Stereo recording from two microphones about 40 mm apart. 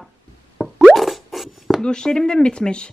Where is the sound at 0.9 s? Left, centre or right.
Centre.